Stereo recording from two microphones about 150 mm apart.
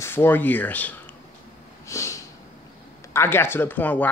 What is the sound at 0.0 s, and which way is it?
Speech, 15° left (ahead or behind).